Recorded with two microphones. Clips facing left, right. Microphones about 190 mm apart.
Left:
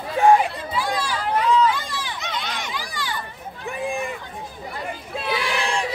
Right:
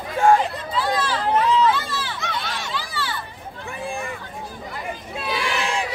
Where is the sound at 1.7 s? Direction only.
15° left (ahead or behind).